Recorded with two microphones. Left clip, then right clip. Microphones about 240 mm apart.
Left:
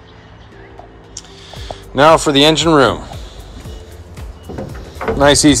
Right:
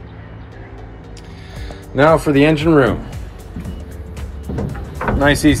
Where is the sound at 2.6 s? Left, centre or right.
Left.